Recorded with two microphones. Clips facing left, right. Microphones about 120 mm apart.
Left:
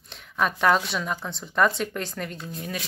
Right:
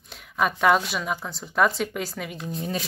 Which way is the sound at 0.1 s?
5° right (ahead or behind).